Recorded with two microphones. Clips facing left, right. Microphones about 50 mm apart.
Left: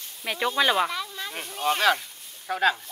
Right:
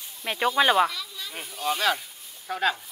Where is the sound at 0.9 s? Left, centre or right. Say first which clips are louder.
Left 5 dB; left.